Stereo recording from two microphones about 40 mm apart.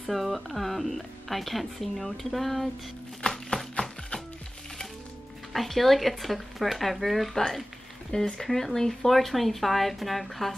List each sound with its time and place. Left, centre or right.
0.1 s speech: centre
3.2 s a sound: left
5.5 s speech: centre
8.1 s speech: centre